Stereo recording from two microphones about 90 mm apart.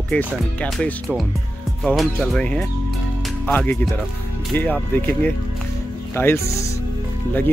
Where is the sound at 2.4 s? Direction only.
10° left (ahead or behind).